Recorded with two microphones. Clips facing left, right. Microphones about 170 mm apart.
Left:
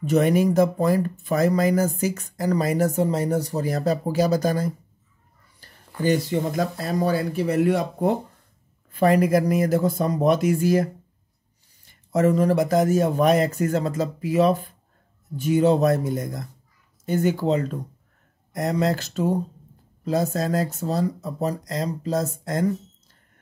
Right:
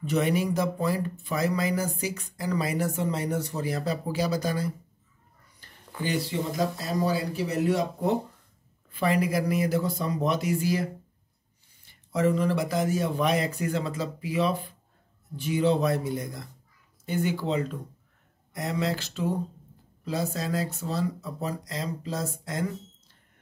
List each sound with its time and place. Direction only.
0.0 s speech: 45° left (ahead or behind)